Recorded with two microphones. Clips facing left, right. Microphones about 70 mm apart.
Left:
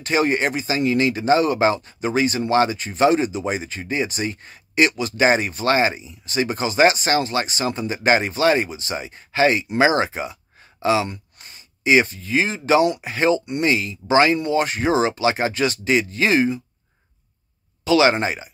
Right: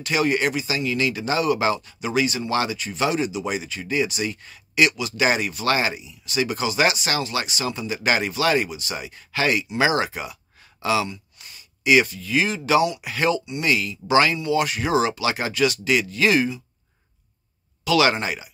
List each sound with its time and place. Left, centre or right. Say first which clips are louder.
0.0 s speech: left 2 dB; left
17.8 s speech: left 3 dB; left